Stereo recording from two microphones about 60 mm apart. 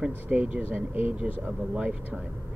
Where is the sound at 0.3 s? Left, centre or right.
Right.